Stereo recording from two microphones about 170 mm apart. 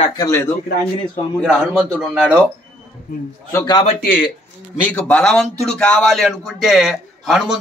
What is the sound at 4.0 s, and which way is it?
Speech, 55° left (ahead or behind).